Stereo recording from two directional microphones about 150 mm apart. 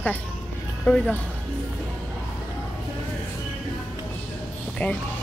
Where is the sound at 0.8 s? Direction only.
10° left (ahead or behind).